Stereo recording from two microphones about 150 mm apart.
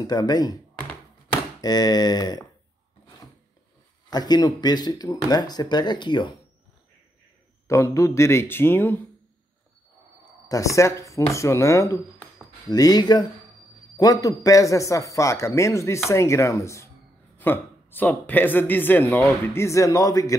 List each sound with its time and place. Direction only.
0.0 s a man's voice: 25° left (ahead or behind)
1.6 s a man's voice: 25° left (ahead or behind)
4.1 s a man's voice: 25° left (ahead or behind)
7.6 s speech: 20° left (ahead or behind)
10.5 s a man's voice: 20° left (ahead or behind)